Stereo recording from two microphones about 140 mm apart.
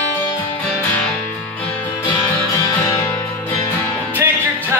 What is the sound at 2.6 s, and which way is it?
Music, 20° left (ahead or behind).